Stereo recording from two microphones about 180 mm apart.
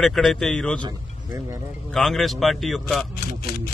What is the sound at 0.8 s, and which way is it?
Speech, 15° right (ahead or behind).